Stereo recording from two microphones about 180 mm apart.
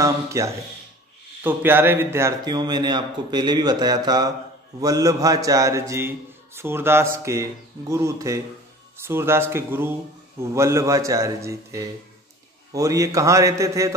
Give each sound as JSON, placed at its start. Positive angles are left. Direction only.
{"t": 0.0, "sound": "a man's voice", "side_deg": -15}